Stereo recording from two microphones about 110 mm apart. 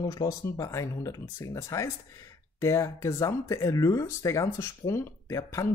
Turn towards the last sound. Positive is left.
turn(degrees=25)  # may be behind; listen again after turning